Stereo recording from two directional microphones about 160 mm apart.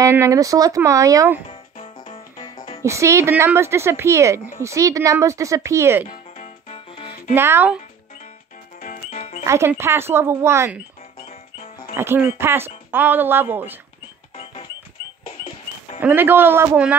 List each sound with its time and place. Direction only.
0.0 s speech: 20° right (ahead or behind)
2.0 s music: 40° left (ahead or behind)
2.8 s a woman's voice: 20° right (ahead or behind)
6.0 s music: 50° left (ahead or behind)
7.3 s a woman's voice: 15° right (ahead or behind)
8.7 s music: 55° left (ahead or behind)
9.5 s a woman's voice: 15° right (ahead or behind)
11.2 s music: 40° left (ahead or behind)
12.0 s a woman's voice: 15° right (ahead or behind)
14.3 s music: 40° left (ahead or behind)
16.0 s a woman's voice: 10° right (ahead or behind)